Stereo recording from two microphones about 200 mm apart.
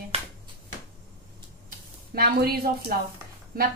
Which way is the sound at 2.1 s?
50° right (ahead or behind).